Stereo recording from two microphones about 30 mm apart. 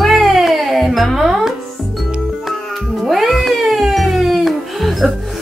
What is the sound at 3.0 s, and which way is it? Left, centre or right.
Cat, centre.